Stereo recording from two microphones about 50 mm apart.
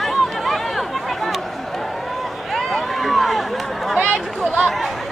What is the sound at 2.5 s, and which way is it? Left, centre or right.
Run, centre.